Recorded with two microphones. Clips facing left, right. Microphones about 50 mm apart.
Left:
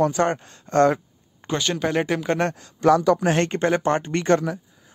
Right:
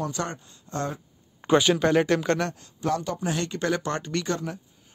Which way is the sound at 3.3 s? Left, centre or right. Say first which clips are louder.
Left 8 dB; left.